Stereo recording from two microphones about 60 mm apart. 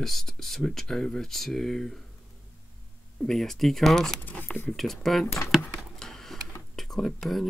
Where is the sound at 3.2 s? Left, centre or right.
Centre.